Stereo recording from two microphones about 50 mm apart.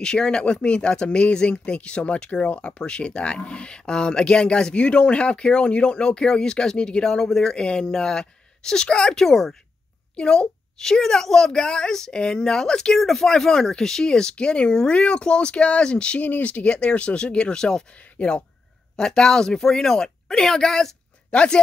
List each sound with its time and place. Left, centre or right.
0.0 s a woman's voice: centre
16.2 s speech: left; by 17.8 s centre
17.9 s speech: left
18.9 s a woman's voice: centre
21.3 s speech: left